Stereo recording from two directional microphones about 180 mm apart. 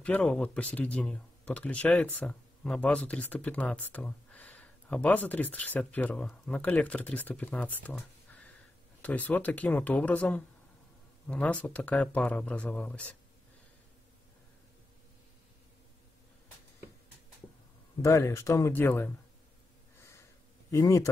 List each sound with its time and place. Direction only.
0.0 s speech: 5° left (ahead or behind)
9.0 s speech: 10° left (ahead or behind)
18.0 s speech: 15° left (ahead or behind)
20.0 s snort: 15° left (ahead or behind)
20.7 s speech: 15° left (ahead or behind)